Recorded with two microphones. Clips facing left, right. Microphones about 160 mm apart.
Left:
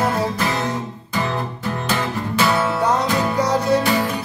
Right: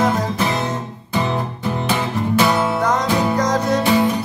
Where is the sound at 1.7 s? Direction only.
15° right (ahead or behind).